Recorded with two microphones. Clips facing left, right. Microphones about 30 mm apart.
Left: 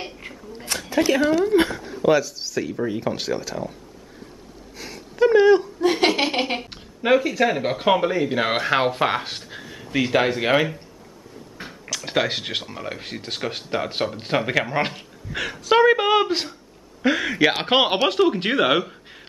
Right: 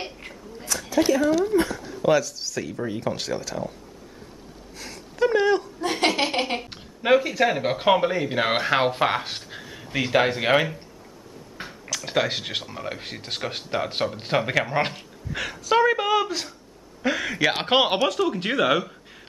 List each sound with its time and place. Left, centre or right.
0.0 s a sound: centre
0.7 s speech: left
2.0 s speech: centre
4.7 s speech: centre
15.6 s speech: left
17.0 s speech: centre
18.3 s speech: left